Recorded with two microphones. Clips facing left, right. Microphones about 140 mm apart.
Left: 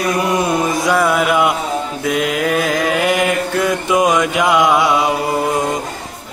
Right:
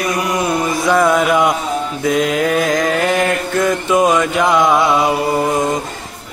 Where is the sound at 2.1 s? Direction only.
5° left (ahead or behind).